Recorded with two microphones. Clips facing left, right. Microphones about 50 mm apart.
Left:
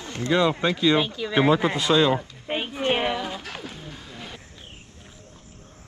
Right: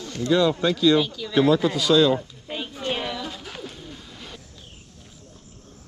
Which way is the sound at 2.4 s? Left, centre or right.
Left.